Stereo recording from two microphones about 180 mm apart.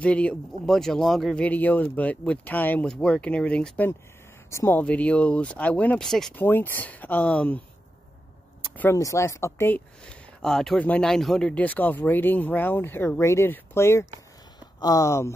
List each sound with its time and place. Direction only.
0.0 s speech: 5° left (ahead or behind)
8.6 s speech: 10° left (ahead or behind)